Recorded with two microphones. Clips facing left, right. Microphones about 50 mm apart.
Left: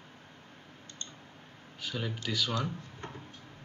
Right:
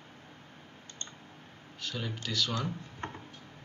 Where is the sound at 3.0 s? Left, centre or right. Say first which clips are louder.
Right 5 dB; right.